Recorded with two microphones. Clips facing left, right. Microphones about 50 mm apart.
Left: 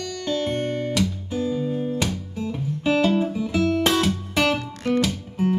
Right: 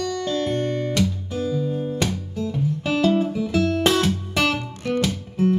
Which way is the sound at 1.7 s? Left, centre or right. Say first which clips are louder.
Even; centre.